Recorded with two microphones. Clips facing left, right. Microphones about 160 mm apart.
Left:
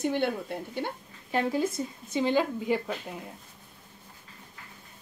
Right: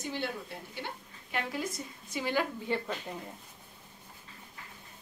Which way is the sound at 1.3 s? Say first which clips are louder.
Left 8 dB; 30° left (ahead or behind).